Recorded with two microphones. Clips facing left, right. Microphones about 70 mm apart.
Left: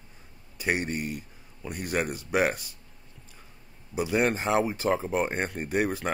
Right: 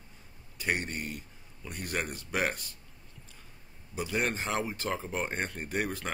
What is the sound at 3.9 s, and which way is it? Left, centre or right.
Speech, centre.